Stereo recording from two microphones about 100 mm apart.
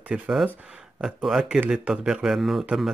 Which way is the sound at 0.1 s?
5° right (ahead or behind).